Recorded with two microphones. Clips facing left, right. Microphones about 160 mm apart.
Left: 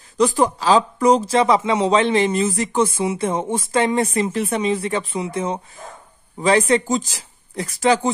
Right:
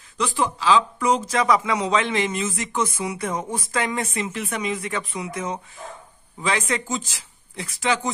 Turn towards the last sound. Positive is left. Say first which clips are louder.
# left 7 dB
turn(degrees=40)  # may be behind; listen again after turning